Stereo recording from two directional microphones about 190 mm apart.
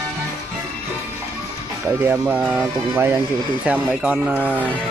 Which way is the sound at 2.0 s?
10° right (ahead or behind).